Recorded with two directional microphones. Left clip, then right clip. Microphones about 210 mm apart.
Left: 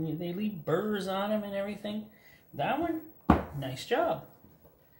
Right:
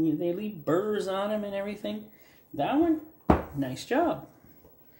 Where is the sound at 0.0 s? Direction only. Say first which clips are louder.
Right 8 dB; 30° right (ahead or behind).